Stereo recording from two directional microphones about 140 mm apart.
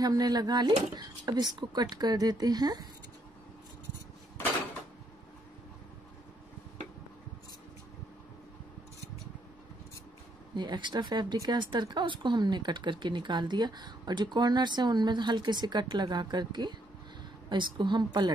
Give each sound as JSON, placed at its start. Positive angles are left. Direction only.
{"t": 0.0, "sound": "speech", "side_deg": -30}
{"t": 10.5, "sound": "speech", "side_deg": -35}